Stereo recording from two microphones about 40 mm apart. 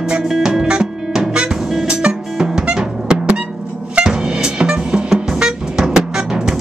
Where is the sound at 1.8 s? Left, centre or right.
Right.